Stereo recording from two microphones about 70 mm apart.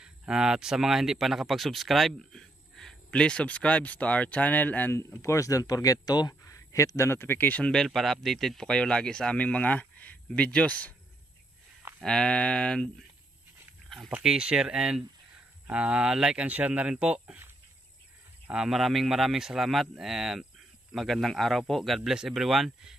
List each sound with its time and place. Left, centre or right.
0.3 s speech: centre; by 4.9 s left
5.2 s speech: left
6.4 s speech: left
7.6 s speech: centre
12.0 s speech: centre
13.8 s dog: centre
14.2 s speech: centre
18.5 s speech: centre